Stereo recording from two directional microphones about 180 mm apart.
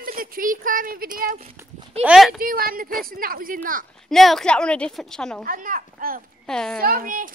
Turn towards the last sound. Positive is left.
turn(degrees=-50)  # may be behind; listen again after turning